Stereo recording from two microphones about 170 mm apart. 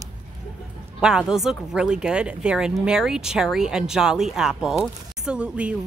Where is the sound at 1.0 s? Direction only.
5° right (ahead or behind).